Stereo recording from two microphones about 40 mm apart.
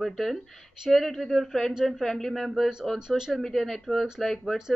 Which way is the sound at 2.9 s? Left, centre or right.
Centre.